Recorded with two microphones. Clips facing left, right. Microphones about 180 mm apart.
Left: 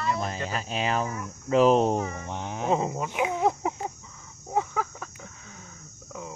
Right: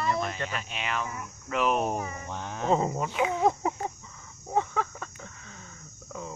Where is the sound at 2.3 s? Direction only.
15° left (ahead or behind).